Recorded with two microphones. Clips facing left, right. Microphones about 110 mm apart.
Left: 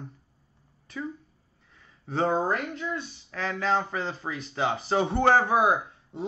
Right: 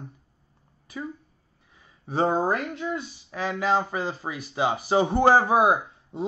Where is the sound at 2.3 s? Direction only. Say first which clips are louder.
Right 2 dB; 10° right (ahead or behind).